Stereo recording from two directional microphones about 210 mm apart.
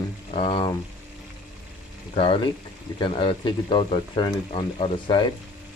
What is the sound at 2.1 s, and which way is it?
Speech, 25° left (ahead or behind).